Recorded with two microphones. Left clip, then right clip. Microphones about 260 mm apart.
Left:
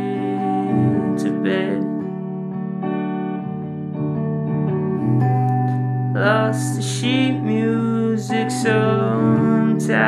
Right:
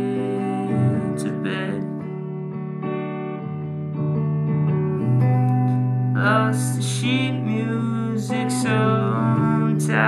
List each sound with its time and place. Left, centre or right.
0.5 s music: right
4.8 s music: right